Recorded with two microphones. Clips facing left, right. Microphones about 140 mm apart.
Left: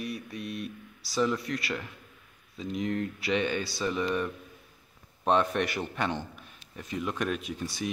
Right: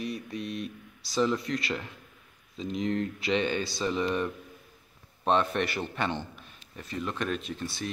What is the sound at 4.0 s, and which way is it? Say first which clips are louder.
Speech: even; 20° right (ahead or behind).